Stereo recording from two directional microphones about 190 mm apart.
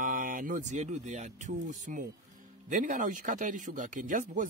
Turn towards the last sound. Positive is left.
turn(degrees=-45)  # may be behind; listen again after turning